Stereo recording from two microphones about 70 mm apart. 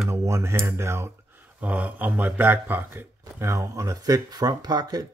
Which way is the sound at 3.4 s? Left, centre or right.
Right.